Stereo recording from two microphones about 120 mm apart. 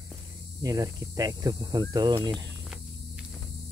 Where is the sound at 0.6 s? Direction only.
30° right (ahead or behind).